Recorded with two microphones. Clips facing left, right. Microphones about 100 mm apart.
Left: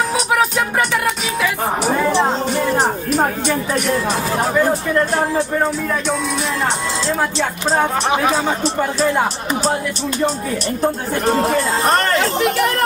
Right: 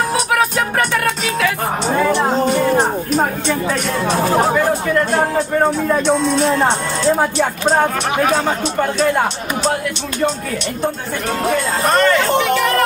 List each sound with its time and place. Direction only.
0.3 s music: 15° left (ahead or behind)
3.2 s speech: 5° left (ahead or behind)
6.0 s speech: 5° left (ahead or behind)
6.5 s speech: 15° right (ahead or behind)
8.7 s speech: 10° left (ahead or behind)
10.8 s speech: 35° left (ahead or behind)